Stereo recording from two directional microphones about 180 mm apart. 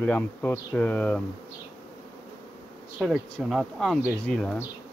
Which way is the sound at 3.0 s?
Centre (ahead or behind).